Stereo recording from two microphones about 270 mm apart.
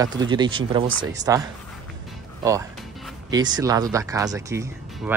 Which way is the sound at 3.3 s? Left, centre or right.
Centre.